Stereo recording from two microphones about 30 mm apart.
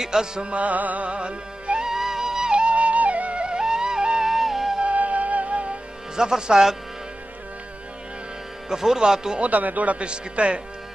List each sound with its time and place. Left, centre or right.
0.0 s speech: centre
0.4 s music: right
1.0 s music: right
1.9 s music: centre
2.5 s music: right
3.6 s music: right
4.2 s music: centre
4.8 s music: right
6.1 s speech: right
8.6 s speech: centre
9.5 s music: right
9.9 s a man's voice: right